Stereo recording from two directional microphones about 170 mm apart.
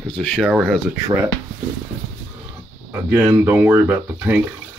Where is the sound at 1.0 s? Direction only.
10° right (ahead or behind).